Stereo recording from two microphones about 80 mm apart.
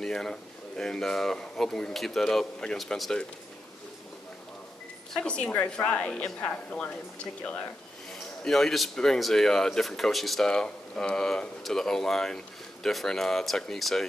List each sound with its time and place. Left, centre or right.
0.0 s speech: centre
5.1 s speech: centre
8.1 s a man's voice: centre